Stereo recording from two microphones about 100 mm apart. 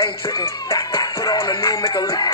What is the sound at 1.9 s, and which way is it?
Music, 45° left (ahead or behind).